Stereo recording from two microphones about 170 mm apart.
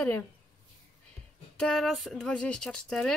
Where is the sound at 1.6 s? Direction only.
5° left (ahead or behind).